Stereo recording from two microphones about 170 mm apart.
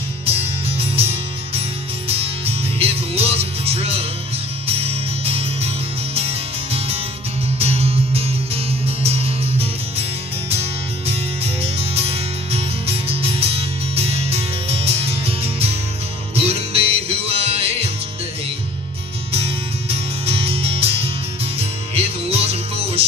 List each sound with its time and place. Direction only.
0.2 s music: 35° right (ahead or behind)
7.8 s music: 35° right (ahead or behind)
11.6 s music: 35° right (ahead or behind)
19.9 s music: 35° right (ahead or behind)